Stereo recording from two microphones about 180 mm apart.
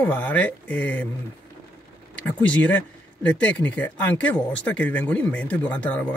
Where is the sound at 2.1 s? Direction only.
5° left (ahead or behind).